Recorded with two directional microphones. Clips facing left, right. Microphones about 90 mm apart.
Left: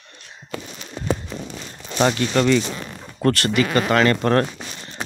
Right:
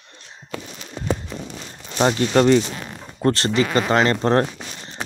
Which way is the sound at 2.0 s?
35° right (ahead or behind).